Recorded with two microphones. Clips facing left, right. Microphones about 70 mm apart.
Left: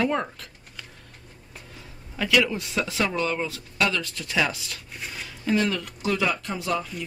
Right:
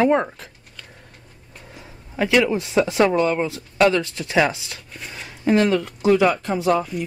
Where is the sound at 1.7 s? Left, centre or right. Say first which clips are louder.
Right 8 dB; right.